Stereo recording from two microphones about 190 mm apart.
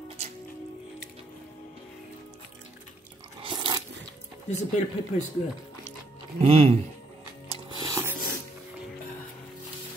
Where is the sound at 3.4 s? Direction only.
25° right (ahead or behind).